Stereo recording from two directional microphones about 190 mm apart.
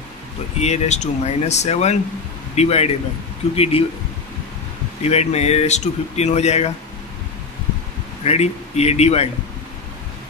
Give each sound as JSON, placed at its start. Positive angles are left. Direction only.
{"t": 0.6, "sound": "speech", "side_deg": 35}
{"t": 5.0, "sound": "speech", "side_deg": 35}
{"t": 8.2, "sound": "speech", "side_deg": 35}